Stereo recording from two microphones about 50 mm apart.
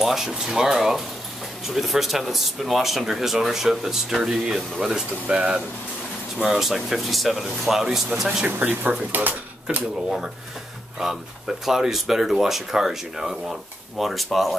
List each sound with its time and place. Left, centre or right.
0.0 s speech: centre
5.2 s speech: right
6.3 s speech: centre
6.6 s speech: centre
8.5 s speech: right
11.0 s speech: centre